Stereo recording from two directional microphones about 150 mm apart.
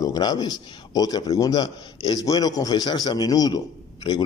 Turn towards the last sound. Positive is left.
turn(degrees=25)  # may be behind; listen again after turning